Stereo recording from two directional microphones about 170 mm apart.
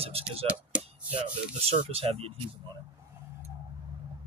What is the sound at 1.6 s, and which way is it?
Speech, 35° right (ahead or behind).